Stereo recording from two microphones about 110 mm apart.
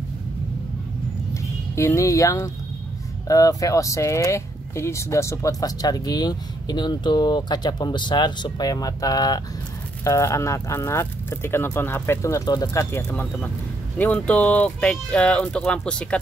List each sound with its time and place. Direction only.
1.3 s speech: 25° left (ahead or behind)
13.1 s speech: 10° left (ahead or behind)